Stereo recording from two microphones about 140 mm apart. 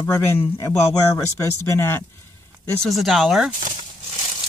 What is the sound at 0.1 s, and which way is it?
Speech, 20° left (ahead or behind).